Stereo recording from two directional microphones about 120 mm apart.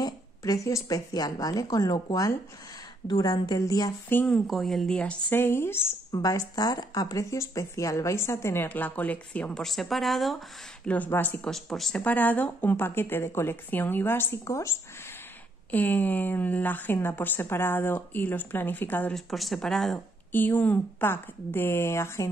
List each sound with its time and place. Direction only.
0.0 s speech: 30° left (ahead or behind)
4.1 s speech: 15° left (ahead or behind)
4.5 s speech: centre (ahead or behind)
10.9 s speech: 15° left (ahead or behind)
11.5 s speech: centre (ahead or behind)
19.1 s speech: centre (ahead or behind)
20.3 s speech: 15° left (ahead or behind)